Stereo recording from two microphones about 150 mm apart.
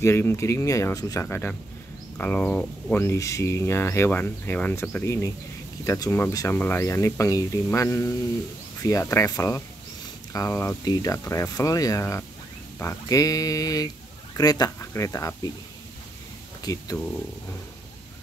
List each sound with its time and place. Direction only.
0.0 s speech: 15° left (ahead or behind)
16.6 s speech: 25° left (ahead or behind)